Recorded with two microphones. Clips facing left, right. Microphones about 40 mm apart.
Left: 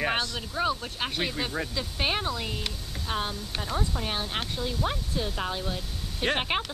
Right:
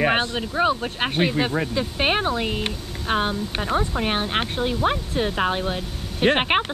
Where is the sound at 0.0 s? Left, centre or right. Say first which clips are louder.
Right 7 dB; right.